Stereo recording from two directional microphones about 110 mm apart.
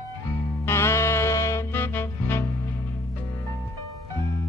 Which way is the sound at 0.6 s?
25° left (ahead or behind).